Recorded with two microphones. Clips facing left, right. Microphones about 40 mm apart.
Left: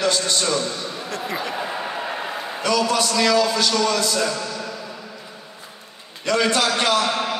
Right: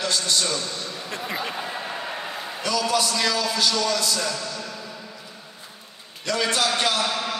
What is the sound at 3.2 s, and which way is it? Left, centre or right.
A man's voice, left.